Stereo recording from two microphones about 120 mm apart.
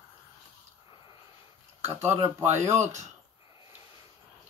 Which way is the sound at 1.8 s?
20° right (ahead or behind).